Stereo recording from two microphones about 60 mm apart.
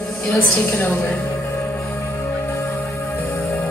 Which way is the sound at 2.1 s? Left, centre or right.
Left.